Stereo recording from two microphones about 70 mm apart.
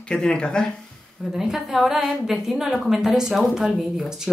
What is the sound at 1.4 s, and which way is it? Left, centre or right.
A woman's voice, centre.